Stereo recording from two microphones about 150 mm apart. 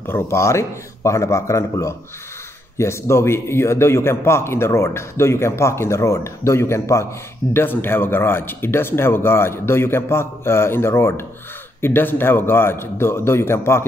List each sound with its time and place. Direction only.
0.0 s a man's voice: 15° left (ahead or behind)